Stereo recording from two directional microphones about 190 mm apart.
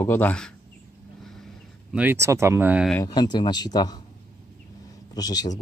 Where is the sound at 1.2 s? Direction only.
Centre (ahead or behind).